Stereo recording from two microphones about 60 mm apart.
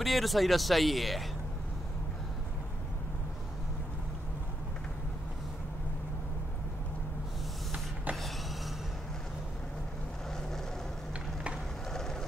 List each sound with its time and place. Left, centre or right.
0.0 s speech: centre
7.7 s a sound: right
11.9 s vehicle: centre